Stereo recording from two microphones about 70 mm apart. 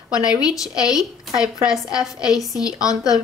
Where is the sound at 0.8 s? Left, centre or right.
Centre.